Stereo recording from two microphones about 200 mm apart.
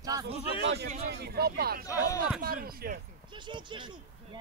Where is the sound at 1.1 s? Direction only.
55° right (ahead or behind).